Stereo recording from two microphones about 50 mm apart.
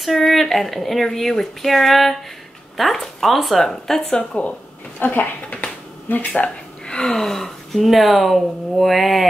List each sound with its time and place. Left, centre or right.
0.0 s speech: centre
4.4 s speech: left
6.3 s speech: left; by 9.3 s centre